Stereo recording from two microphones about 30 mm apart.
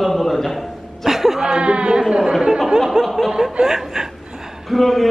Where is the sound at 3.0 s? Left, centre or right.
Centre.